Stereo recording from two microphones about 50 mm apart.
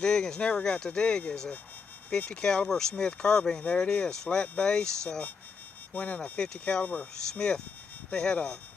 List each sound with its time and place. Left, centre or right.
0.0 s speech: centre